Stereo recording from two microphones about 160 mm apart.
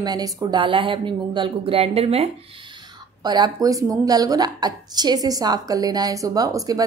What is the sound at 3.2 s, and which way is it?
Speech, 25° right (ahead or behind).